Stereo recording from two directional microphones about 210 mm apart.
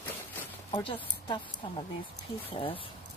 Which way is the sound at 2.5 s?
25° left (ahead or behind).